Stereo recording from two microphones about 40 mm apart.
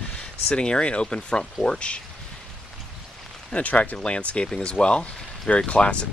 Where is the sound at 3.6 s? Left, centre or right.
Left.